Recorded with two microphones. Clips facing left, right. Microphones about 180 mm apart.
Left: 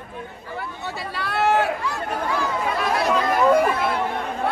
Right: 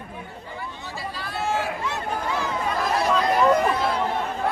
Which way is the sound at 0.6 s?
65° left (ahead or behind).